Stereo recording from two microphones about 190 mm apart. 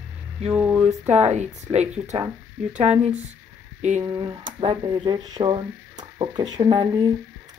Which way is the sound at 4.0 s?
20° right (ahead or behind).